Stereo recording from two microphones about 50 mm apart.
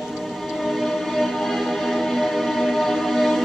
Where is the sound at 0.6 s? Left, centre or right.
Centre.